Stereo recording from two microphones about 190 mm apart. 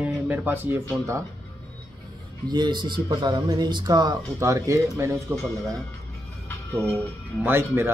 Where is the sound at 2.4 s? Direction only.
25° right (ahead or behind).